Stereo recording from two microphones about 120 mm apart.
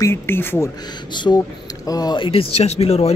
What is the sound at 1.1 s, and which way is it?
Speech, 40° left (ahead or behind).